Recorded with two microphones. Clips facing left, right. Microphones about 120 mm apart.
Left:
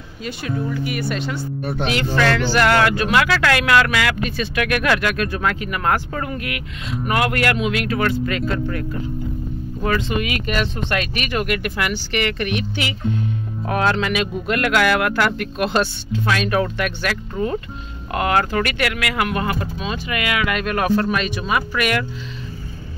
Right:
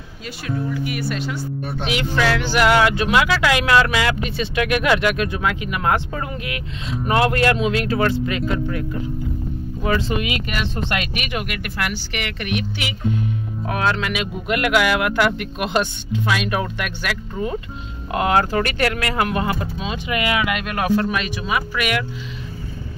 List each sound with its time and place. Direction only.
0.5 s speech: centre (ahead or behind); by 8.5 s 20° right (ahead or behind)
11.0 s speech: 10° right (ahead or behind)
18.1 s speech: 20° right (ahead or behind)
20.4 s speech: 5° right (ahead or behind)